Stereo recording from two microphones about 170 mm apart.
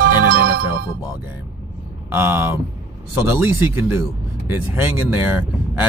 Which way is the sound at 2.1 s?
15° right (ahead or behind).